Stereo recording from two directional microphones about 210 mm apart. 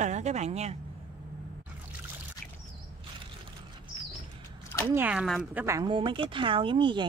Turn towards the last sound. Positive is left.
turn(degrees=-25)  # may be behind; listen again after turning